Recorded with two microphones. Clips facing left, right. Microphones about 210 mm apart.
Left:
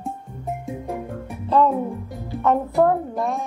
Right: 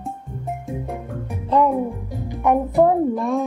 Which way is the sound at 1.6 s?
15° right (ahead or behind).